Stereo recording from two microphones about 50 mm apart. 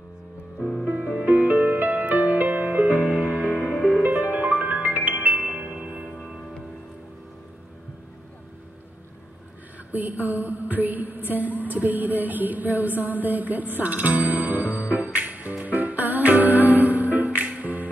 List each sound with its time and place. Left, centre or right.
0.6 s music: centre
0.8 s music: right
1.2 s music: right
3.7 s music: centre
4.0 s music: right
5.7 s music: right
6.1 s music: centre
9.9 s a sound: right
11.2 s music: right